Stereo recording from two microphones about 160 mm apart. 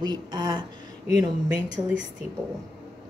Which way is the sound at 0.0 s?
30° right (ahead or behind).